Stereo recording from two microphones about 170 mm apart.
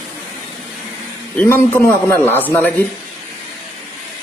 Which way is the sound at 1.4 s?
10° left (ahead or behind).